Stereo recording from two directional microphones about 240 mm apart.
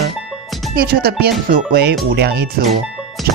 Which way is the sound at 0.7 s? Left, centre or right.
Right.